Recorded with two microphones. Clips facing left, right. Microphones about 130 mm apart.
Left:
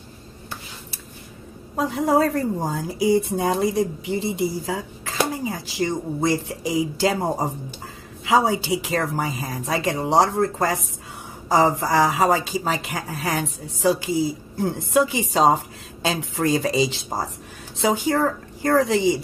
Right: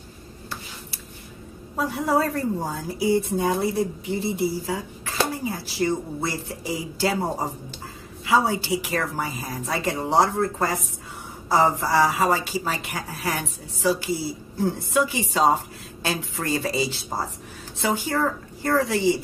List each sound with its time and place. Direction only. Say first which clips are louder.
1.8 s speech: left 3 dB; 15° left (ahead or behind)
11.5 s a woman's voice: left 2 dB; 15° left (ahead or behind)